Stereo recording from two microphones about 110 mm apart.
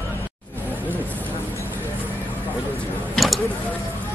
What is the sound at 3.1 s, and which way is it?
Vehicle, centre (ahead or behind).